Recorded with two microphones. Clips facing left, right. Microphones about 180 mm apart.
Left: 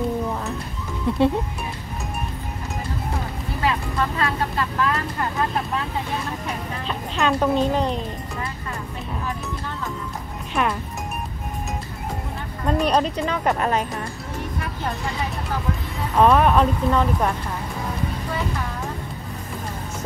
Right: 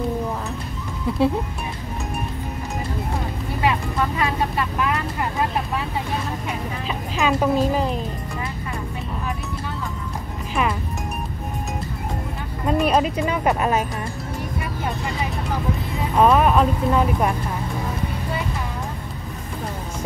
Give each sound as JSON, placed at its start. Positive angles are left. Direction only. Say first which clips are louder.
{"t": 1.0, "sound": "speech", "louder": "left 1 dB", "side_deg": 0}
{"t": 4.2, "sound": "speech", "louder": "right 1 dB", "side_deg": -15}
{"t": 6.9, "sound": "speech", "louder": "even", "side_deg": -5}
{"t": 10.5, "sound": "music", "louder": "even", "side_deg": 0}
{"t": 12.6, "sound": "speech", "louder": "right 1 dB", "side_deg": -5}
{"t": 16.2, "sound": "speech", "louder": "even", "side_deg": -5}